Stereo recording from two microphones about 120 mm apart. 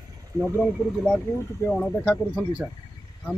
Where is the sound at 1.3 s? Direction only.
20° left (ahead or behind).